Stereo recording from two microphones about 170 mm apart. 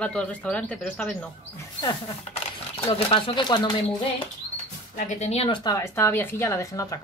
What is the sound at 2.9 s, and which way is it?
Speech, 35° left (ahead or behind).